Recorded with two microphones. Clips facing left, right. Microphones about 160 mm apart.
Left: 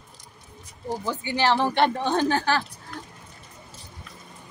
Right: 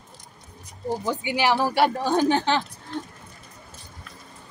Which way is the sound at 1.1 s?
10° right (ahead or behind).